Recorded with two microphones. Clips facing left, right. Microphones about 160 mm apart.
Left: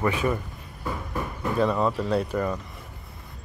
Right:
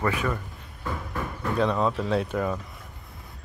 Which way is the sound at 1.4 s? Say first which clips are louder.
Left 1 dB; 5° left (ahead or behind).